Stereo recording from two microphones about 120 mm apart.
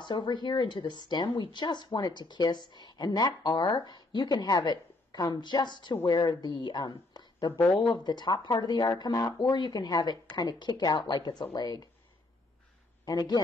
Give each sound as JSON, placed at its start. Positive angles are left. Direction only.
{"t": 0.0, "sound": "speech", "side_deg": 40}
{"t": 13.0, "sound": "a man's voice", "side_deg": 35}